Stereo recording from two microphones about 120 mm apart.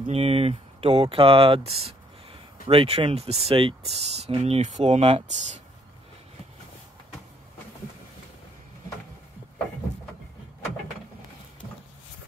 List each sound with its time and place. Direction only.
0.1 s speech: 55° right (ahead or behind)